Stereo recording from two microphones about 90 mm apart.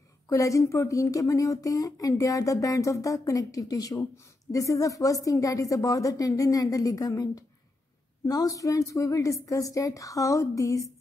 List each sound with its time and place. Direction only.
0.3 s speech: 35° left (ahead or behind)